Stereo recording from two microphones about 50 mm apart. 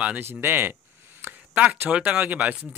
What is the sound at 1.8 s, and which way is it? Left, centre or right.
Speech, right.